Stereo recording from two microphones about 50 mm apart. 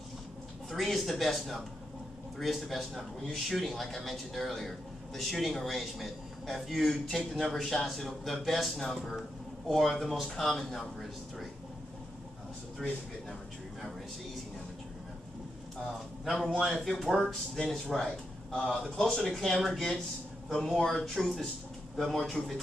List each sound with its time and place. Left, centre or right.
0.7 s speech: centre
12.8 s speech: centre
16.5 s speech: centre
18.6 s a man's voice: centre